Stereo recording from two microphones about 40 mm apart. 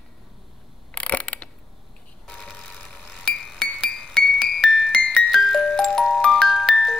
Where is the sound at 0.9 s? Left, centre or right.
Left.